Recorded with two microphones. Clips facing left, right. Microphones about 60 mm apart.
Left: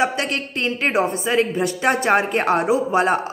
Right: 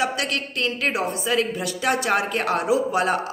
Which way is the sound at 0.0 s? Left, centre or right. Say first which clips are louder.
Left 3 dB; left.